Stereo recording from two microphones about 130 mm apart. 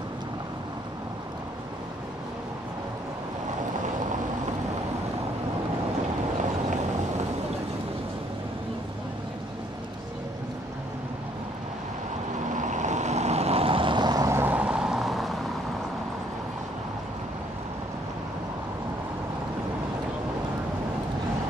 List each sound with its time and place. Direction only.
12.5 s vehicle: 70° right (ahead or behind); by 15.3 s centre (ahead or behind)